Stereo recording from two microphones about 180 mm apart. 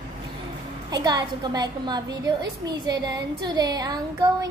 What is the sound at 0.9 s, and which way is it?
A woman's voice, 20° right (ahead or behind).